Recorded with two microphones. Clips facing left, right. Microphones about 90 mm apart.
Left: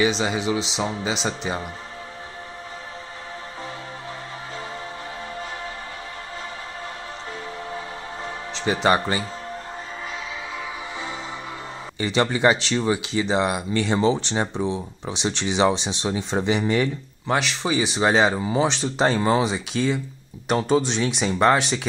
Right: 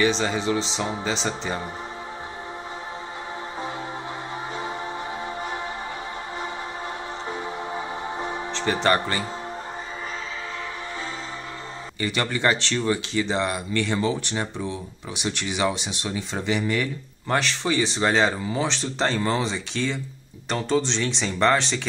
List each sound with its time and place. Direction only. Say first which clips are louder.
0.2 s speech: even; 10° left (ahead or behind)
8.8 s speech: left 3 dB; 15° left (ahead or behind)
12.0 s speech: left 4 dB; 20° left (ahead or behind)
17.3 s speech: left 1 dB; 10° left (ahead or behind)